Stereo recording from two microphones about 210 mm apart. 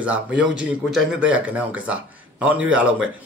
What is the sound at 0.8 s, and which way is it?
Speech, centre (ahead or behind).